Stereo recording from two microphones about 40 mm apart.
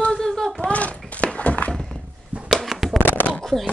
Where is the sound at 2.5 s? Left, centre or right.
Centre.